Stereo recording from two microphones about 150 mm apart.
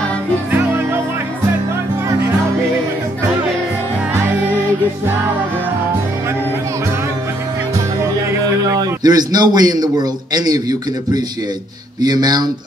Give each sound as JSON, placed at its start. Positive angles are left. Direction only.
{"t": 0.5, "sound": "music", "side_deg": -15}
{"t": 8.6, "sound": "a man's voice", "side_deg": -25}